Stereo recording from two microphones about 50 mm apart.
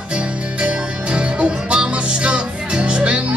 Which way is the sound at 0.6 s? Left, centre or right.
Right.